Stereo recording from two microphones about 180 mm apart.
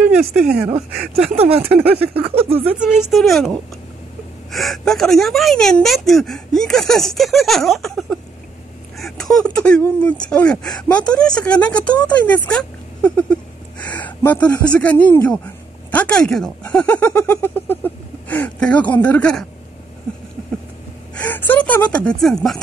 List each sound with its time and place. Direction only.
0.7 s speech: 35° right (ahead or behind)
1.6 s speech: 10° right (ahead or behind)
2.1 s speech: 30° right (ahead or behind)
2.8 s speech: centre (ahead or behind)
21.1 s speech: 10° left (ahead or behind)